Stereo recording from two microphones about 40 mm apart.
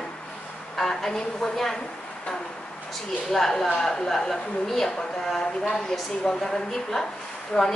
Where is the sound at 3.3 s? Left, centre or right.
Centre.